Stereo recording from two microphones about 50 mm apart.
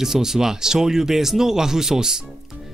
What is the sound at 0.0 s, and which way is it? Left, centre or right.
Speech, centre.